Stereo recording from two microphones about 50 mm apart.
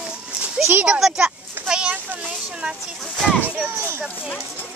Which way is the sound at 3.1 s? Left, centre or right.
Centre.